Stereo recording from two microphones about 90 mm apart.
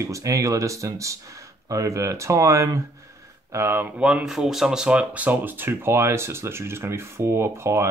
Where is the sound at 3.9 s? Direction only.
10° right (ahead or behind).